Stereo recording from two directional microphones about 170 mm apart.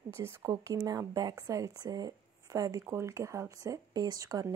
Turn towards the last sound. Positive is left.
turn(degrees=-20)  # may be behind; listen again after turning